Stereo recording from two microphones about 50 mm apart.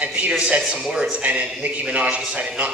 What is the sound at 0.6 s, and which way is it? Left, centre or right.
Speech, centre.